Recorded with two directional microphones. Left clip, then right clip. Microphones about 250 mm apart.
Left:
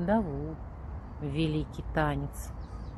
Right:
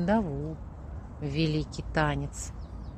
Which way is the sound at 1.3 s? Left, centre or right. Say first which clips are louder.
Right 2 dB; right.